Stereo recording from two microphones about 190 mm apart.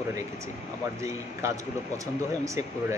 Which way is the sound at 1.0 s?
15° right (ahead or behind).